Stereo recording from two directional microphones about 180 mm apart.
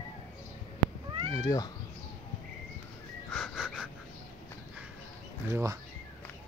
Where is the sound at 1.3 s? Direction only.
20° left (ahead or behind).